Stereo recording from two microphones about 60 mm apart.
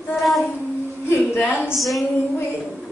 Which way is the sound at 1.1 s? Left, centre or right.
Left.